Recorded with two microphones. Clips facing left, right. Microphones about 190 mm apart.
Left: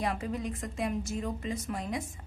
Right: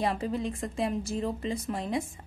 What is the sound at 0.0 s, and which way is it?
Speech, 30° right (ahead or behind).